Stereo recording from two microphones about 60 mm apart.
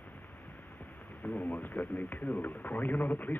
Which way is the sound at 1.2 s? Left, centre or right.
Left.